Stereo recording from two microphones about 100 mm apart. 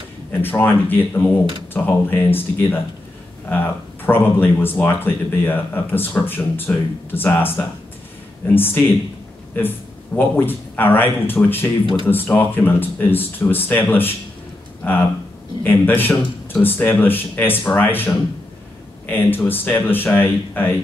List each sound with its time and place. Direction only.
0.3 s speech: 20° left (ahead or behind)